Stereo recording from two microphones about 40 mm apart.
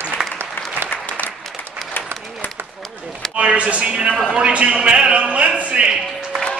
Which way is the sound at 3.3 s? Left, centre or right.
Right.